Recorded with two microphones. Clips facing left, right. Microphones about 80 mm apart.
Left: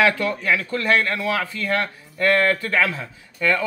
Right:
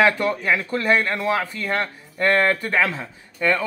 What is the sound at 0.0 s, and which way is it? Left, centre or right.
Speech, right.